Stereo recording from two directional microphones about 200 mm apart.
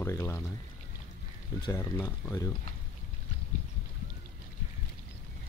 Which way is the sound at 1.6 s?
15° left (ahead or behind).